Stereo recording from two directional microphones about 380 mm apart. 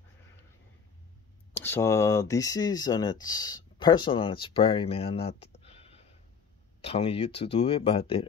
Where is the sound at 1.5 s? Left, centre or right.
Centre.